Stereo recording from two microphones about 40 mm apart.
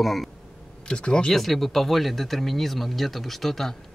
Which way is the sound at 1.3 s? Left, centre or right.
Centre.